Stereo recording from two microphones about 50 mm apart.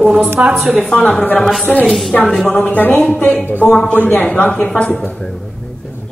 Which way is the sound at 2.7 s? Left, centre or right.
Left.